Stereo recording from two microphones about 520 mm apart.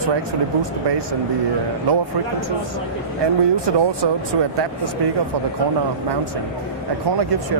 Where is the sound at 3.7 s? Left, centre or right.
Right.